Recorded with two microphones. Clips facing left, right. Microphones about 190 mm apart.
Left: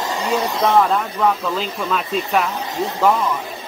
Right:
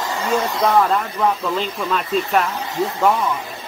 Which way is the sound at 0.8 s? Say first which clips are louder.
Left 1 dB; centre (ahead or behind).